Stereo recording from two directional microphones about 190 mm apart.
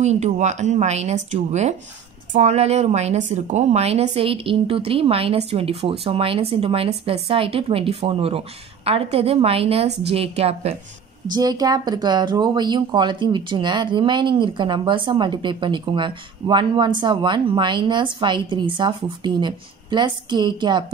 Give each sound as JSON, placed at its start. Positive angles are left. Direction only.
{"t": 0.0, "sound": "speech", "side_deg": -35}
{"t": 11.3, "sound": "speech", "side_deg": -20}